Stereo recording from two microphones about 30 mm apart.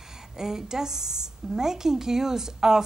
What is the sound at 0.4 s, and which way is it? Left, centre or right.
Speech, centre.